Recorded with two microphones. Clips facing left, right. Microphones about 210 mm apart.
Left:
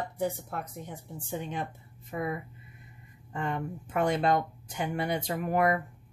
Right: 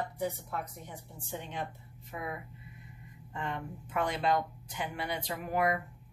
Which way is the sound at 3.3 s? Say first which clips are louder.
Left 5 dB; 45° left (ahead or behind).